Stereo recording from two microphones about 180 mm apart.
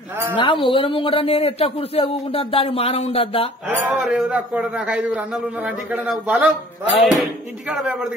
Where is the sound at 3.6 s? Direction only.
10° right (ahead or behind).